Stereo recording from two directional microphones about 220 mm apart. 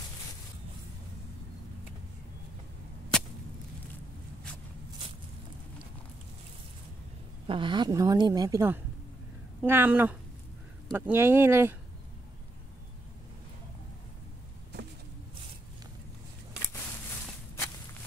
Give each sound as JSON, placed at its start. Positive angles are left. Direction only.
{"t": 3.1, "sound": "whip", "side_deg": 5}
{"t": 7.4, "sound": "a woman's voice", "side_deg": -20}